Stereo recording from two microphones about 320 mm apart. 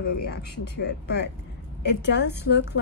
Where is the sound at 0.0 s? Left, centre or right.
Left.